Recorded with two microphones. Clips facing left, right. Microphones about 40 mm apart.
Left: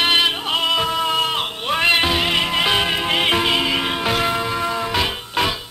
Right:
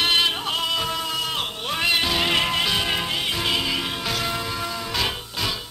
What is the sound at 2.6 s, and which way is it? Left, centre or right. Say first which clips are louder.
Music: left 5 dB; left.